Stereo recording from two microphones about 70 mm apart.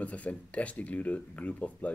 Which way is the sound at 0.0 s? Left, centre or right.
Centre.